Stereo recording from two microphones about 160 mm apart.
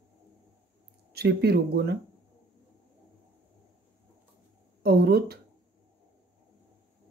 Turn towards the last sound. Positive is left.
turn(degrees=-85)